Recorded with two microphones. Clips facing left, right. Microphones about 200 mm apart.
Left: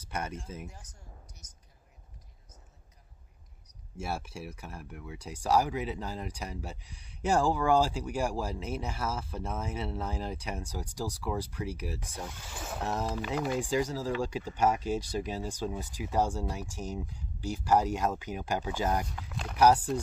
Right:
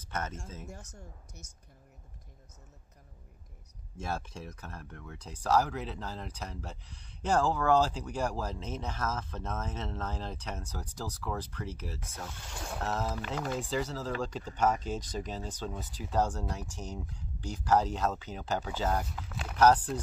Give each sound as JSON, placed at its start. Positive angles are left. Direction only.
{"t": 0.0, "sound": "speech", "side_deg": 10}
{"t": 0.7, "sound": "speech", "side_deg": -60}
{"t": 3.9, "sound": "speech", "side_deg": 10}
{"t": 19.1, "sound": "speech", "side_deg": 0}
{"t": 19.5, "sound": "speech", "side_deg": 10}